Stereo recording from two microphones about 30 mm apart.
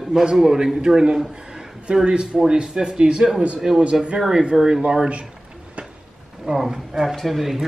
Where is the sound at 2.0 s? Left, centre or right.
Right.